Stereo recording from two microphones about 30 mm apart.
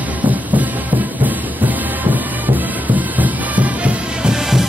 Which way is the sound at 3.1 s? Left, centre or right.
Right.